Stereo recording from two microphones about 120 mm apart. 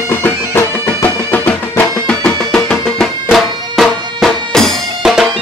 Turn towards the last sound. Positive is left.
turn(degrees=0)  # may be behind; listen again after turning